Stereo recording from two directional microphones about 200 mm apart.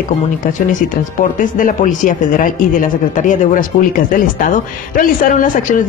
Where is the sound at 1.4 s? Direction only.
40° left (ahead or behind).